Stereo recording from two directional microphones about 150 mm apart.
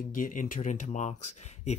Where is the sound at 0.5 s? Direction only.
55° left (ahead or behind).